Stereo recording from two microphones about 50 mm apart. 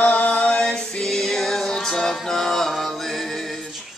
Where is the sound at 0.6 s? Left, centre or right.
Centre.